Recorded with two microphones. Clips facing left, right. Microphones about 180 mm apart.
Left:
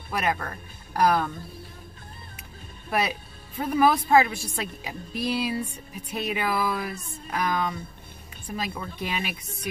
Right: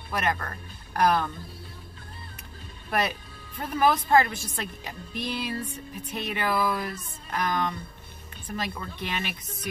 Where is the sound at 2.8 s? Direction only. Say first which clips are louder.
Left 1 dB; 5° left (ahead or behind).